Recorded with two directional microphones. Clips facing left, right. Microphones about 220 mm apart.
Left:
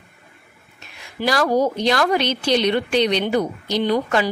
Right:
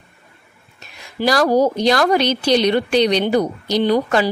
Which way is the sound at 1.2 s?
40° right (ahead or behind).